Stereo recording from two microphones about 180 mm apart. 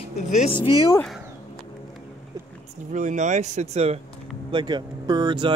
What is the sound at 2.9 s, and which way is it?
Speech, 45° right (ahead or behind).